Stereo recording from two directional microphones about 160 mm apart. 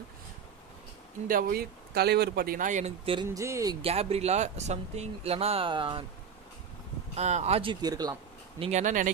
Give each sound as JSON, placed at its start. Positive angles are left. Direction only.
{"t": 1.2, "sound": "speech", "side_deg": -65}
{"t": 3.3, "sound": "speech", "side_deg": -20}
{"t": 3.8, "sound": "speech", "side_deg": -40}
{"t": 7.2, "sound": "speech", "side_deg": -45}
{"t": 7.8, "sound": "speech", "side_deg": -25}
{"t": 8.5, "sound": "speech", "side_deg": -45}